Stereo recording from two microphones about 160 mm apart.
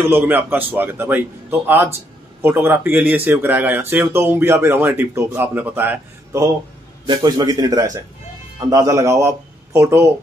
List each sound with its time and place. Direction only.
0.0 s a man's voice: 15° right (ahead or behind)